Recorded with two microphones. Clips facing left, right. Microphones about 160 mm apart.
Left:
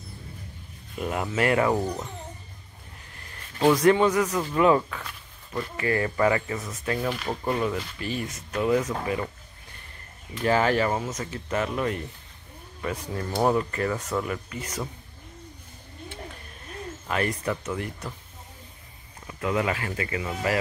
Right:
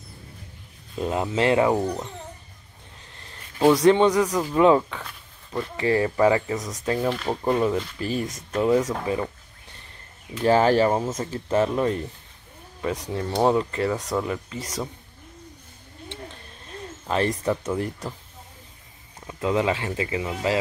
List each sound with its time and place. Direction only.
0.9 s speech: 25° right (ahead or behind)
3.5 s speech: 10° right (ahead or behind)
4.9 s a sound: 5° right (ahead or behind)
5.8 s speech: 25° right (ahead or behind)
8.0 s speech: 35° right (ahead or behind)
8.5 s speech: 15° right (ahead or behind)
10.4 s speech: 30° right (ahead or behind)
13.1 s speech: 20° right (ahead or behind)
17.1 s speech: 25° right (ahead or behind)
19.2 s speech: 25° right (ahead or behind)